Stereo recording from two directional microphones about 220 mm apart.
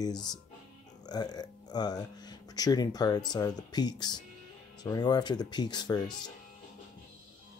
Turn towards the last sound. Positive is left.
turn(degrees=20)  # may be behind; listen again after turning